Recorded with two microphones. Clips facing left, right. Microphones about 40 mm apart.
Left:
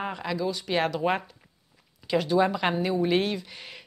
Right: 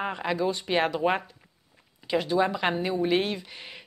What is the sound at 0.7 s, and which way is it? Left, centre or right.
A woman's voice, centre.